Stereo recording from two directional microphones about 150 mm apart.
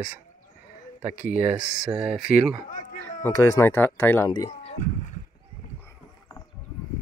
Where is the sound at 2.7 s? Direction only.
60° left (ahead or behind).